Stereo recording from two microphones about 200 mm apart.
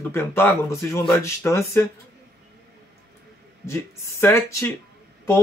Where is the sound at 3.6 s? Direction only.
15° left (ahead or behind).